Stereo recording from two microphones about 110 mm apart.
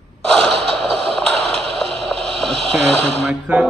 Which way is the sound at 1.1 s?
5° left (ahead or behind).